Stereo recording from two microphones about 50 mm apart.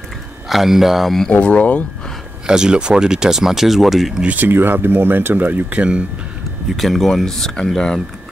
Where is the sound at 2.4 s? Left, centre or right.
Centre.